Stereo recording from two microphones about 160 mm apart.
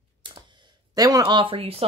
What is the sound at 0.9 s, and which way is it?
Speech, 25° right (ahead or behind).